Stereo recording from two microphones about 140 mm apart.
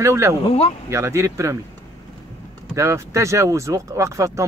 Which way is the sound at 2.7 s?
20° right (ahead or behind).